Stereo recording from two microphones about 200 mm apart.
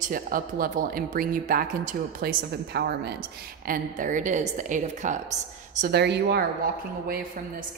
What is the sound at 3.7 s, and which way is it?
A woman's voice, 40° right (ahead or behind).